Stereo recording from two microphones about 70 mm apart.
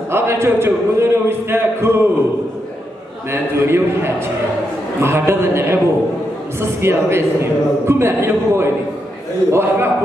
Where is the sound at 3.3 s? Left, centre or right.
Right.